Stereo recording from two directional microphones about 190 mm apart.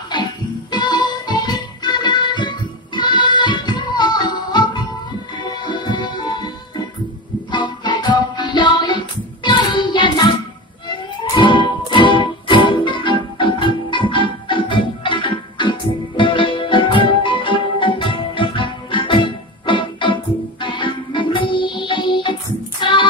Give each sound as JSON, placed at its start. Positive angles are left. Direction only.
{"t": 0.1, "sound": "music", "side_deg": 25}
{"t": 7.5, "sound": "music", "side_deg": 25}
{"t": 11.3, "sound": "music", "side_deg": 25}